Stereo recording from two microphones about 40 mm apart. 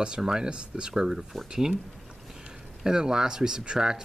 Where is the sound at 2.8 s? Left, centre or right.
Centre.